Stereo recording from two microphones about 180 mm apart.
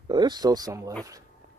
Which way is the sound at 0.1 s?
25° right (ahead or behind).